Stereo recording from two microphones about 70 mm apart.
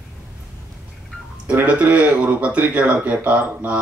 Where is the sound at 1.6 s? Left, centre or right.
Centre.